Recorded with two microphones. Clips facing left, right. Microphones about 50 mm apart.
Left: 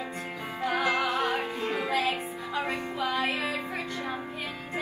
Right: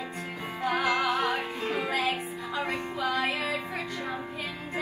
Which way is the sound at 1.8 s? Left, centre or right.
Right.